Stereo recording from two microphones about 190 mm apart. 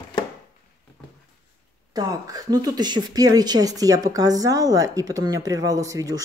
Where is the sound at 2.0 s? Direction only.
20° right (ahead or behind).